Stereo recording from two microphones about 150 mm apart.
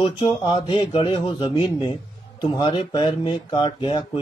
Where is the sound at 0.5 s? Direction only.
35° left (ahead or behind).